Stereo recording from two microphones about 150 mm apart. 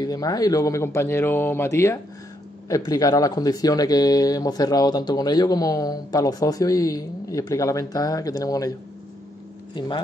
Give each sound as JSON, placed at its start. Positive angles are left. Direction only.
{"t": 0.0, "sound": "speech", "side_deg": 25}